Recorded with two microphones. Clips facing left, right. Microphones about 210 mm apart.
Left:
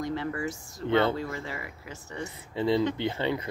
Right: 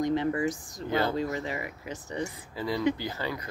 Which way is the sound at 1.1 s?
20° right (ahead or behind).